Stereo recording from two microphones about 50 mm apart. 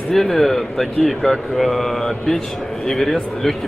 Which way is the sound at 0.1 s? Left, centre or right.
Centre.